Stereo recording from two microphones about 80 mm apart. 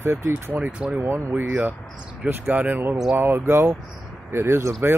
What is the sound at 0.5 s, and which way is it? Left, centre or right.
Speech, centre.